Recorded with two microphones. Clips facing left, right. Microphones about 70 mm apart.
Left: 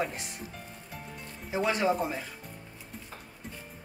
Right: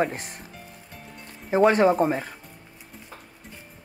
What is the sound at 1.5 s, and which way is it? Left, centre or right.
Speech, right.